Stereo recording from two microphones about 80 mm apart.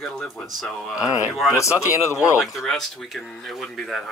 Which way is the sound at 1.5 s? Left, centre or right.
Left.